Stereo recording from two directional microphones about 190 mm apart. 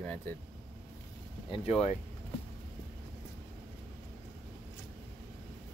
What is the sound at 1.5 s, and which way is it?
Speech, 30° left (ahead or behind).